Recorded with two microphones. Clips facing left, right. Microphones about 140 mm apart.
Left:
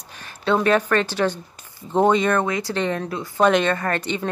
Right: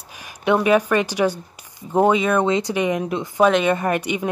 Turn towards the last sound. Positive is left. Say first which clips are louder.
# right 3 dB
turn(degrees=-10)  # may be behind; listen again after turning